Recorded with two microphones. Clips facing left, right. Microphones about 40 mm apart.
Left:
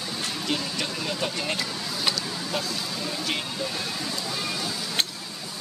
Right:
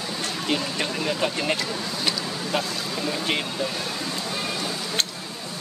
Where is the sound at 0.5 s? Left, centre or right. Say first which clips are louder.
Right 4 dB; centre.